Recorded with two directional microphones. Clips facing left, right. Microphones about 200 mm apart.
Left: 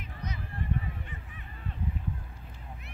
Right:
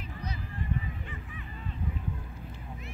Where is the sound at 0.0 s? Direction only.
30° right (ahead or behind).